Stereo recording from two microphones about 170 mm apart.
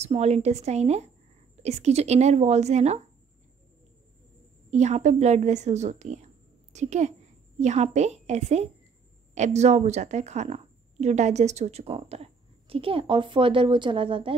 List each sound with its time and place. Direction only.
0.0 s a woman's voice: 40° right (ahead or behind)
4.6 s a woman's voice: 40° right (ahead or behind)